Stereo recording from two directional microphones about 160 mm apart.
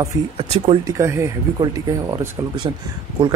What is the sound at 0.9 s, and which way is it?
Speech, 20° right (ahead or behind).